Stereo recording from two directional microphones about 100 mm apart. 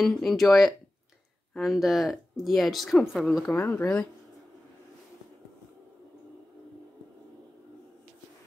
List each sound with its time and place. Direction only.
0.0 s speech: 5° left (ahead or behind)
3.5 s speech: 20° left (ahead or behind)